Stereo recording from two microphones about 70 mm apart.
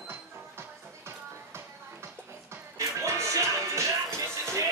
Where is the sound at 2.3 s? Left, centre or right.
Right.